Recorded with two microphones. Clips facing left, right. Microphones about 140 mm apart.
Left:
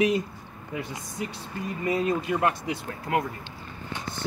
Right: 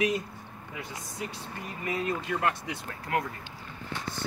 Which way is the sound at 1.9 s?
30° left (ahead or behind).